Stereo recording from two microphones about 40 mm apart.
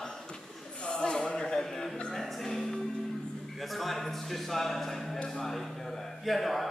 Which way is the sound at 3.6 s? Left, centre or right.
Centre.